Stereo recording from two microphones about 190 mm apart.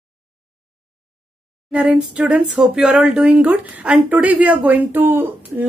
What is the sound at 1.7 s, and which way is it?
Speech, 5° right (ahead or behind).